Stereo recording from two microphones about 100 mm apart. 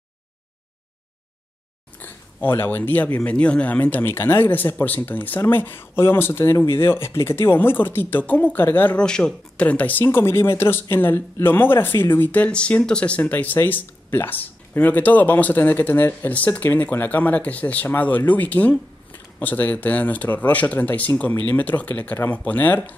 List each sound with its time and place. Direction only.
2.0 s speech: 20° left (ahead or behind)